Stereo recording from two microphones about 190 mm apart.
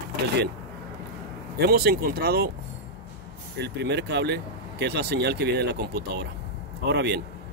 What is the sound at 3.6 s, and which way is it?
Speech, 60° right (ahead or behind).